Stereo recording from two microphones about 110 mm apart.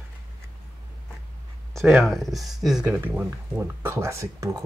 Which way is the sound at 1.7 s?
Centre (ahead or behind).